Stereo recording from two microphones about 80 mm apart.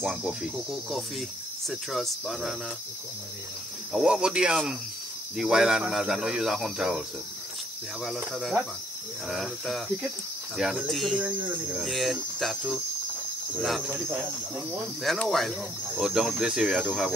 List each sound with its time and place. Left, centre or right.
0.0 s speech: centre
3.9 s speech: centre
8.0 s speech: centre
11.1 s cricket: centre
11.7 s speech: centre
14.0 s cricket: right
15.2 s speech: centre